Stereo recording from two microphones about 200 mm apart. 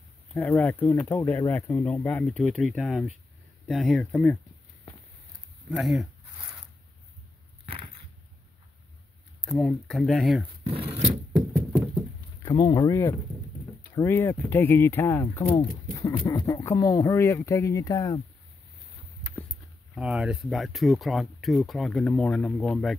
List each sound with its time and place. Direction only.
0.3 s speech: 10° left (ahead or behind)
5.7 s speech: centre (ahead or behind)
7.6 s a sound: 30° right (ahead or behind)
9.4 s speech: centre (ahead or behind)
10.6 s a sound: 30° right (ahead or behind)
12.4 s speech: 20° left (ahead or behind)
20.0 s speech: 5° right (ahead or behind)